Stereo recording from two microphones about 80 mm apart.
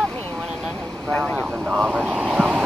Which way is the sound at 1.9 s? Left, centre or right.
Centre.